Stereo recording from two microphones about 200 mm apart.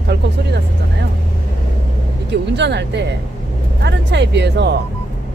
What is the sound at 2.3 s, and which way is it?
Speech, 60° right (ahead or behind).